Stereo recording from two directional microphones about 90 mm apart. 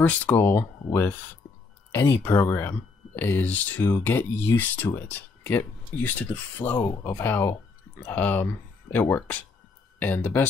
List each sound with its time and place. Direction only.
0.0 s speech: 20° left (ahead or behind)
1.9 s speech: 25° left (ahead or behind)
6.6 s speech: 80° left
7.1 s speech: 20° left (ahead or behind)